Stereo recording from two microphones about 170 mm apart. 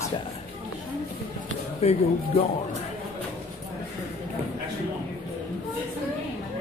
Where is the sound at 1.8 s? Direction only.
40° left (ahead or behind).